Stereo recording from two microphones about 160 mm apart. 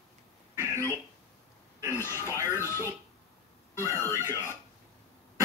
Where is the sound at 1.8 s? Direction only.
15° left (ahead or behind).